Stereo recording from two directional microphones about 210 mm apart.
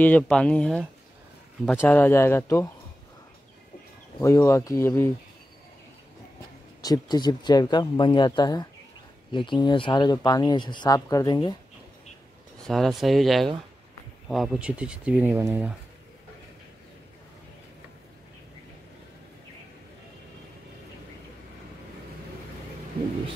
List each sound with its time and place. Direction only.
0.0 s speech: 5° left (ahead or behind)
4.2 s speech: 15° left (ahead or behind)
6.8 s speech: 20° left (ahead or behind)
12.6 s speech: centre (ahead or behind)